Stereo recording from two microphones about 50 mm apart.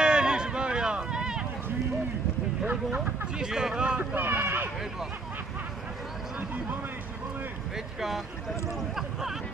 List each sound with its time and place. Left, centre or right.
0.0 s a sound: centre
2.6 s speech: right
4.1 s speech: right